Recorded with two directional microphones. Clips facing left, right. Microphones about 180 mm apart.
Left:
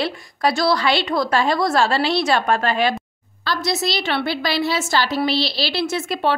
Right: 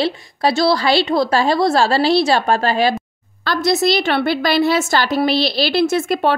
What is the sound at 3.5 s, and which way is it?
A woman's voice, 50° right (ahead or behind).